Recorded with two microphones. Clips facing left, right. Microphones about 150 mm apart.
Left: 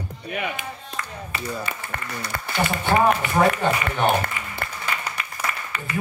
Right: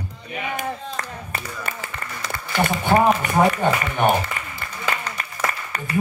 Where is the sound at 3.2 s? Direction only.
45° right (ahead or behind).